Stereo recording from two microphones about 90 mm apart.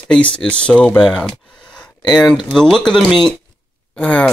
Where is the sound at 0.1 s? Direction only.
10° left (ahead or behind).